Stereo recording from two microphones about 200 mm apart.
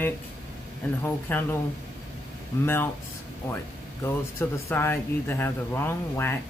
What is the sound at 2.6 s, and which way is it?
Speech, 10° left (ahead or behind).